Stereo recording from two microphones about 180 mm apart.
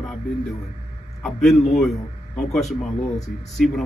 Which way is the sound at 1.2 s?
Centre (ahead or behind).